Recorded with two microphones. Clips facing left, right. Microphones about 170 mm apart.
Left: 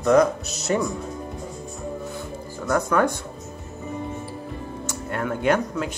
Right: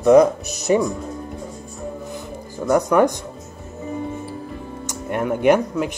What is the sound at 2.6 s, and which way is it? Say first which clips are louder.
Speech: right 5 dB; 15° right (ahead or behind).